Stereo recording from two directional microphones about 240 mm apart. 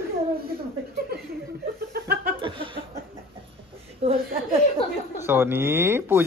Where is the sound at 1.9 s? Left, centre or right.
Right.